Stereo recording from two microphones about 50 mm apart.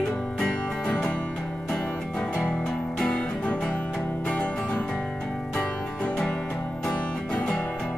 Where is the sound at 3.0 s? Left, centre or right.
Left.